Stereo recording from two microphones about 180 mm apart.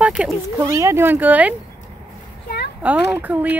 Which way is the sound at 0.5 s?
15° right (ahead or behind).